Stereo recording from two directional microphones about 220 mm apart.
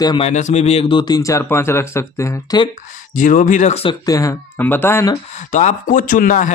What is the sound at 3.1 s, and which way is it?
Speech, 35° left (ahead or behind).